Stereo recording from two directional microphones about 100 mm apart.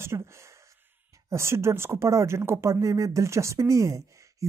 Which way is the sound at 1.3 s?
25° right (ahead or behind).